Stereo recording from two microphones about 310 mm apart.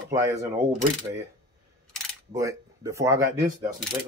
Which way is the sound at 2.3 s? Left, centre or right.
Centre.